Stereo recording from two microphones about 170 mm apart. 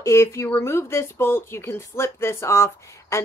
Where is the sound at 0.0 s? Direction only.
15° left (ahead or behind).